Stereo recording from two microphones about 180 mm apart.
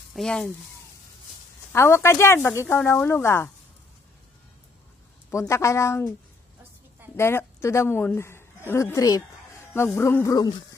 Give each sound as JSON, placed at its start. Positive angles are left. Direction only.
{"t": 0.1, "sound": "speech", "side_deg": 5}
{"t": 1.7, "sound": "speech", "side_deg": 15}
{"t": 5.5, "sound": "speech", "side_deg": 15}
{"t": 7.2, "sound": "a woman's voice", "side_deg": 15}